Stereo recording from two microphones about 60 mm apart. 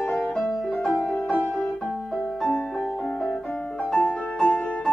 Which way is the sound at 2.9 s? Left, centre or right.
Left.